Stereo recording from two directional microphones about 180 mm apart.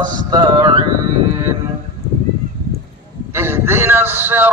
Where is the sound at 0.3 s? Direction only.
25° right (ahead or behind).